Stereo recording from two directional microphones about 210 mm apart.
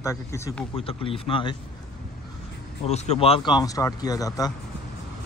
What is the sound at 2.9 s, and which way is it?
Speech, 30° left (ahead or behind).